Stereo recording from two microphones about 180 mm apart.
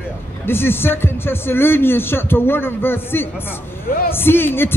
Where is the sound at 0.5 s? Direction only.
10° left (ahead or behind).